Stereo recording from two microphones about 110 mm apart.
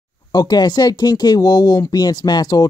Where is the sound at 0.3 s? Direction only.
40° left (ahead or behind).